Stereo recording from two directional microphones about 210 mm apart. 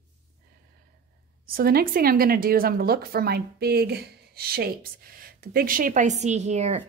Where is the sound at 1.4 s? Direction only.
45° right (ahead or behind).